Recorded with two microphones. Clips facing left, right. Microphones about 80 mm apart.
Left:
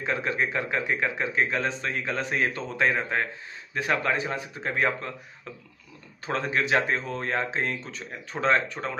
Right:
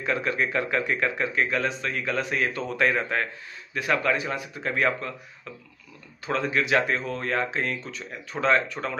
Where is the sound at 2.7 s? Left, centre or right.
Left.